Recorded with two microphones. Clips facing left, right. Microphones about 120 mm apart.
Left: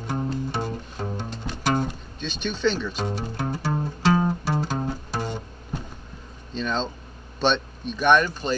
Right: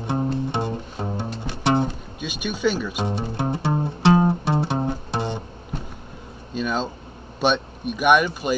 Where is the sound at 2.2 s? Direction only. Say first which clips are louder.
Right 1 dB; 10° right (ahead or behind).